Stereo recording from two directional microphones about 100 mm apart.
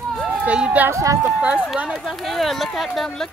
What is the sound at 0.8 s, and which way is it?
Speech, 30° right (ahead or behind).